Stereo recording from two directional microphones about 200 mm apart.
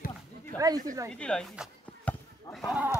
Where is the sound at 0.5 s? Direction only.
10° left (ahead or behind).